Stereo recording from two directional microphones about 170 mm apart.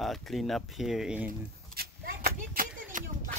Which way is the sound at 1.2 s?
60° right (ahead or behind).